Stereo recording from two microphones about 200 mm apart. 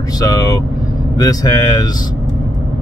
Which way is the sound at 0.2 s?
20° left (ahead or behind).